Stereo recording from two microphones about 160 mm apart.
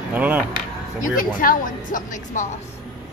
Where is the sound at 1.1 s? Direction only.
60° left (ahead or behind).